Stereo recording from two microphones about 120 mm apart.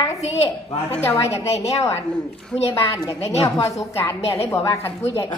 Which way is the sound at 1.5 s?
65° left (ahead or behind).